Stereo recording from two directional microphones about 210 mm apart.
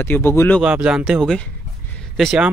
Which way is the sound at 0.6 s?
5° right (ahead or behind).